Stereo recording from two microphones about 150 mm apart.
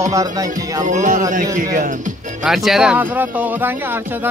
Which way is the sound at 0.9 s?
55° right (ahead or behind).